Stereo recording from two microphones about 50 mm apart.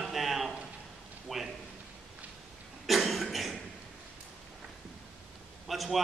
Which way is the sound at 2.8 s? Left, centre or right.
Centre.